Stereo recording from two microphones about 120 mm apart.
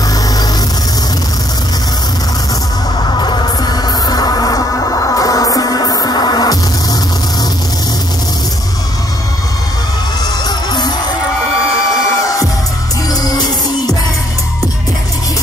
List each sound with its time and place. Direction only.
3.0 s music: 40° left (ahead or behind)
10.4 s music: 35° left (ahead or behind)
13.1 s music: 30° left (ahead or behind)